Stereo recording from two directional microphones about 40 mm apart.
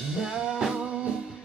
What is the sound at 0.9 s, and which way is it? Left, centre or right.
Music, right.